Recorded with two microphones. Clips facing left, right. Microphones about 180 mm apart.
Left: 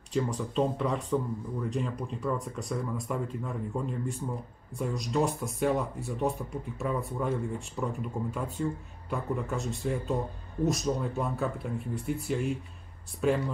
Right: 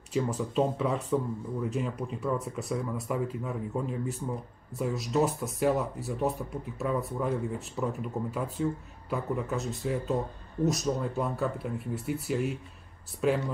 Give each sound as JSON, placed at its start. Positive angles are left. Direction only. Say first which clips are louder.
{"t": 0.1, "sound": "speech", "louder": "right 1 dB", "side_deg": -5}